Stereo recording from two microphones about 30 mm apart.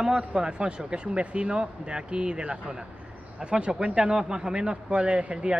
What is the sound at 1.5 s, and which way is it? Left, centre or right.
Speech, right.